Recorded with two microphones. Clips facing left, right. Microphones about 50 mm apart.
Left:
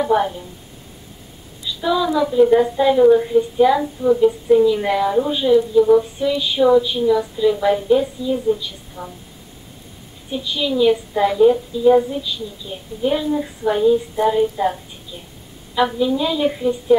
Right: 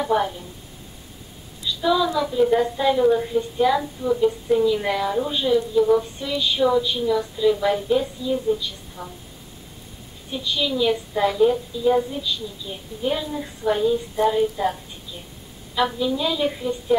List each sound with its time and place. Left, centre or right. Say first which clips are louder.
0.0 s a woman's voice: left 4 dB; centre
1.6 s a woman's voice: left 1 dB; centre
10.3 s a woman's voice: left 3 dB; centre